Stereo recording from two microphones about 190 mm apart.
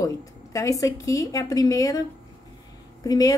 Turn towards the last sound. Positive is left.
turn(degrees=20)  # may be behind; listen again after turning